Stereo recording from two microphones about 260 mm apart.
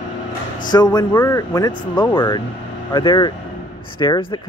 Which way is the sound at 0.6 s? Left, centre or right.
Centre.